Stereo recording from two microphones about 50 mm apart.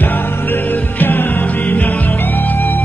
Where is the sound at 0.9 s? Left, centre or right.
Left.